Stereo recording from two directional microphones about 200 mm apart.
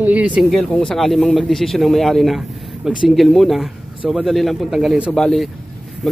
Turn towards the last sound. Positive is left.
turn(degrees=0)  # may be behind; listen again after turning